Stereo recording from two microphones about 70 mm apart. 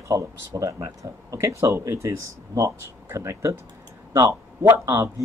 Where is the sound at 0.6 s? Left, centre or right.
Right.